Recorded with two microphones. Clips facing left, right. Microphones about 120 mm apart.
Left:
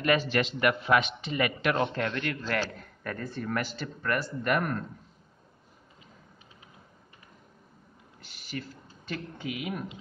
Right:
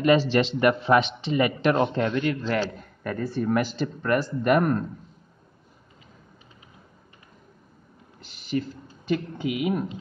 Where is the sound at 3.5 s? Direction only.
20° right (ahead or behind).